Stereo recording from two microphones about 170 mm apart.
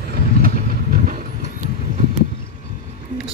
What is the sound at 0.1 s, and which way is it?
Vehicle, 55° right (ahead or behind).